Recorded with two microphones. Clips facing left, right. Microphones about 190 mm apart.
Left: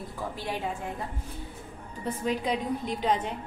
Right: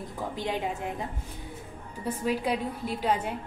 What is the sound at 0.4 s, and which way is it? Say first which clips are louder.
Speech: right 3 dB; 20° right (ahead or behind).